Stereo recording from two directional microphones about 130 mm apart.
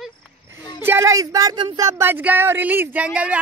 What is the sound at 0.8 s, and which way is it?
Speech, 20° right (ahead or behind).